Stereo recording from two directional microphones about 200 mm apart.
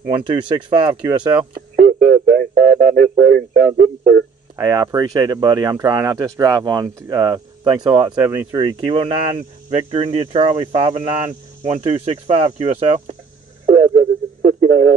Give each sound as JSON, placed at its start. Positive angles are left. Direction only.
{"t": 0.0, "sound": "speech", "side_deg": -25}
{"t": 1.8, "sound": "speech", "side_deg": -40}
{"t": 4.6, "sound": "speech", "side_deg": -20}
{"t": 13.7, "sound": "radio", "side_deg": -45}